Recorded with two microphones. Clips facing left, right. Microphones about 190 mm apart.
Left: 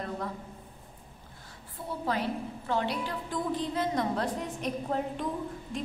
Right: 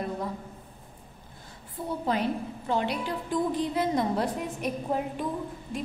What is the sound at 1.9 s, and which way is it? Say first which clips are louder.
A woman's voice: right 3 dB; 20° right (ahead or behind).